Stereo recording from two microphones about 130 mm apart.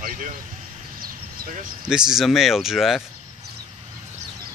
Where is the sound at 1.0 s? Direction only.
90° right.